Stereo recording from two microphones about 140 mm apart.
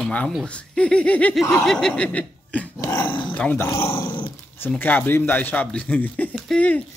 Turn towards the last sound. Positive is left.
turn(degrees=10)  # may be behind; listen again after turning